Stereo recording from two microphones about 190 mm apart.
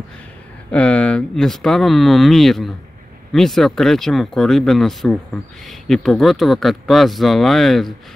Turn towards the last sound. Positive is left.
turn(degrees=0)  # may be behind; listen again after turning